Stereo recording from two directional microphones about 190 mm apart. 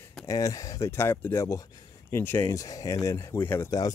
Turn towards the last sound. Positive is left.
turn(degrees=15)  # may be behind; listen again after turning